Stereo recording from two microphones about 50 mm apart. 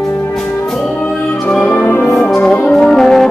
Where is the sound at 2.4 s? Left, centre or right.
Left.